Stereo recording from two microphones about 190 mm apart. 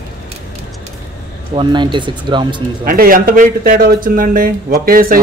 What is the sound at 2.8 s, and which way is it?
Speech, 50° right (ahead or behind).